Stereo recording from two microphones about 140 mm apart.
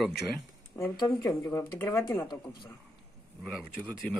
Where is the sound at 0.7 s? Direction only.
15° left (ahead or behind).